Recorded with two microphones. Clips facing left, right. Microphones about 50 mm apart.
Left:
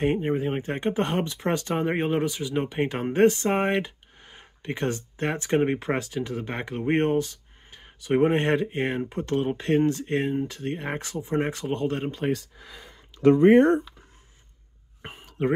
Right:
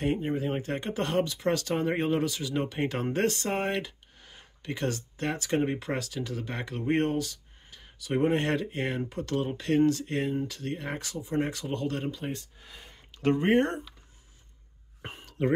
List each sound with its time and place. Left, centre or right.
0.0 s speech: left
15.0 s whispering: centre